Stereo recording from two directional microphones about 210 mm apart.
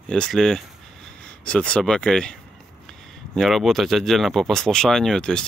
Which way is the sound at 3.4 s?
Centre (ahead or behind).